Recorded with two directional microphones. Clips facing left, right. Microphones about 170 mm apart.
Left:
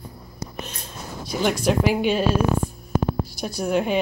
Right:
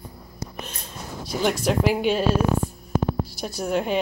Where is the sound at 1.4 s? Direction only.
Centre (ahead or behind).